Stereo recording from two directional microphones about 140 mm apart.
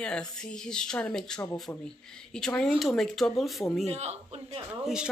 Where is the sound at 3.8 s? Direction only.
50° right (ahead or behind).